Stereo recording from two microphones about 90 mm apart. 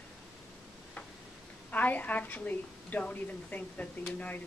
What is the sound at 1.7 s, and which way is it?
A woman's voice, 20° left (ahead or behind).